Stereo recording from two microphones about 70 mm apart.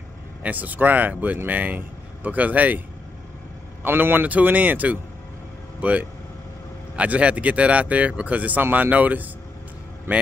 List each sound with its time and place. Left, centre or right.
0.4 s speech: right
3.8 s speech: right